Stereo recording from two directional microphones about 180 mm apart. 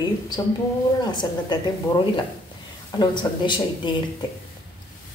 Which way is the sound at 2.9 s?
25° left (ahead or behind).